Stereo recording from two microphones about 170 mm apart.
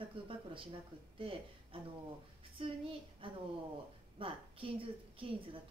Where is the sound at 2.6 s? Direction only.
30° right (ahead or behind).